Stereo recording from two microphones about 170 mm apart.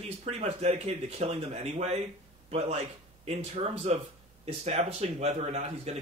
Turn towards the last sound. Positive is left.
turn(degrees=-40)  # may be behind; listen again after turning